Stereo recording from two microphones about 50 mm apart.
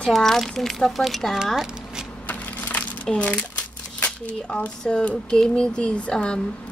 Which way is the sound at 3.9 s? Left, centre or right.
Left.